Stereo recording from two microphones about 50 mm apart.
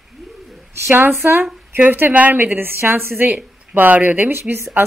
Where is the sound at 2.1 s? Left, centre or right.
Right.